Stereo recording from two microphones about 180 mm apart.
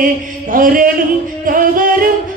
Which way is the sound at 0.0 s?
50° right (ahead or behind).